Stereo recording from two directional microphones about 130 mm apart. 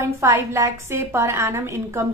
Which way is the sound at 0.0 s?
20° right (ahead or behind).